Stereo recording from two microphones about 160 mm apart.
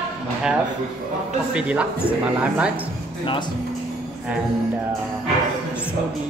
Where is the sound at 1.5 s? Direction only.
10° right (ahead or behind).